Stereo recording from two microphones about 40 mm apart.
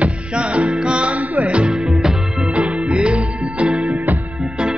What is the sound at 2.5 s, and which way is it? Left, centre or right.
Music, right.